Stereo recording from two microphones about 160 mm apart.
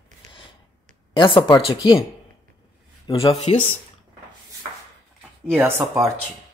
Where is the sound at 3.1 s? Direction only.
40° left (ahead or behind).